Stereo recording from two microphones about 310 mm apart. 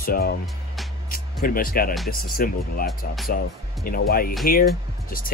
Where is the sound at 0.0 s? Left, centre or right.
Left.